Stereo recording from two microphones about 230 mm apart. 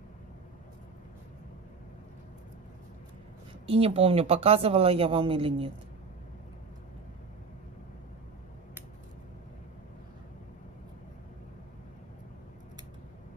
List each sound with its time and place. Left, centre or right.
3.6 s speech: right